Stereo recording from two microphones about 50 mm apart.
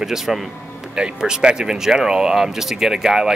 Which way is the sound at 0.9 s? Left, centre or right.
Centre.